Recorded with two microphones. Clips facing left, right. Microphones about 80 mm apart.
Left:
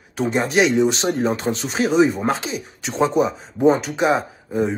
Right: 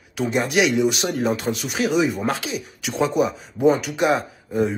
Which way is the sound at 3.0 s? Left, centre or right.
Left.